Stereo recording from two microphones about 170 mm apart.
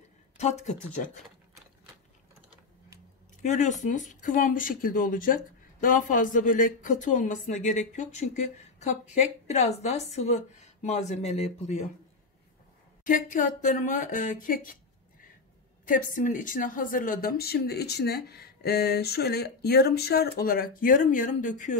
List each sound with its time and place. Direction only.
0.4 s speech: 40° left (ahead or behind)
3.4 s a woman's voice: 45° left (ahead or behind)
13.0 s speech: 50° left (ahead or behind)
15.8 s speech: 50° left (ahead or behind)